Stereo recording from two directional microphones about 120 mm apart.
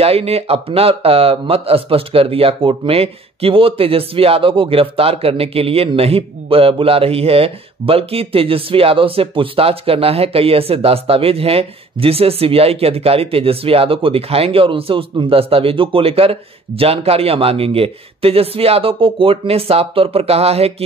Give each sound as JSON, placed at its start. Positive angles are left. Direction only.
{"t": 0.0, "sound": "speech", "side_deg": -55}